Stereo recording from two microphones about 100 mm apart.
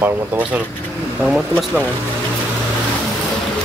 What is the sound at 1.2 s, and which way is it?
Speech, 5° right (ahead or behind).